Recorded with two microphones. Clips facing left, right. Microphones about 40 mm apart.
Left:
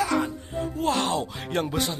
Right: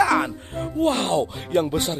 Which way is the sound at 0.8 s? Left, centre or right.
Right.